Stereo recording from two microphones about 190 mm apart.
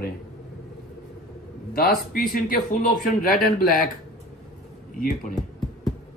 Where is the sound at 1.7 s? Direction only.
55° left (ahead or behind).